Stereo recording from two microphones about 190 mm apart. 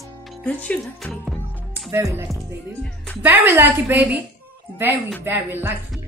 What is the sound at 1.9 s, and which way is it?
Speech, 15° right (ahead or behind).